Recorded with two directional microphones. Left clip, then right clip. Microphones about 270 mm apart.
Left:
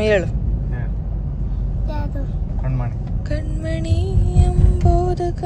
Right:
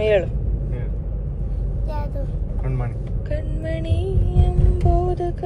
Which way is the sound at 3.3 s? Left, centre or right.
Centre.